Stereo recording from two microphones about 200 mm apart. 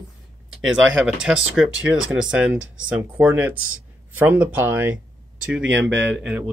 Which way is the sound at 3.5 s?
90° right.